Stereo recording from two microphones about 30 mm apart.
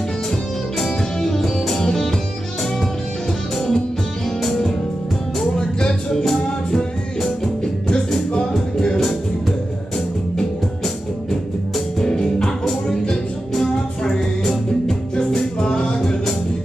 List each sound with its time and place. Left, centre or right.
1.2 s music: centre
3.5 s music: centre
5.6 s music: left
6.7 s music: centre
12.0 s music: left
14.4 s music: centre
15.6 s music: left